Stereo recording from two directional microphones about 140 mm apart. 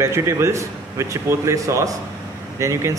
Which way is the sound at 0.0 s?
20° right (ahead or behind).